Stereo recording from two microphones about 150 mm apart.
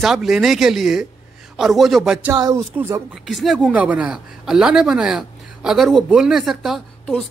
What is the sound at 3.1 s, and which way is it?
A woman's voice, centre (ahead or behind).